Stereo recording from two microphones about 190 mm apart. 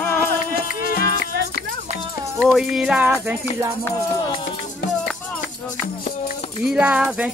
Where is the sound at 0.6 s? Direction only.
50° left (ahead or behind).